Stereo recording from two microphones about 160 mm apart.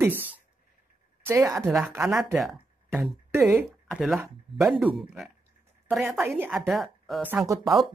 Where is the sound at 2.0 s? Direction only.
5° right (ahead or behind).